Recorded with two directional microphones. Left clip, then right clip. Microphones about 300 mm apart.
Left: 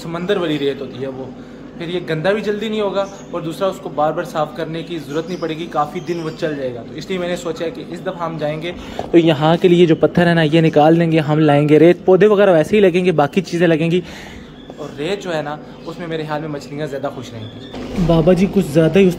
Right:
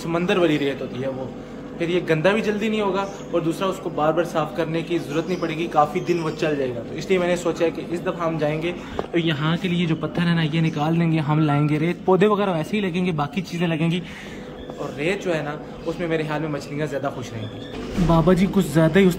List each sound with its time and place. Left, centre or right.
0.1 s a man's voice: centre
1.8 s a man's voice: centre
9.1 s a man's voice: centre
18.6 s a man's voice: centre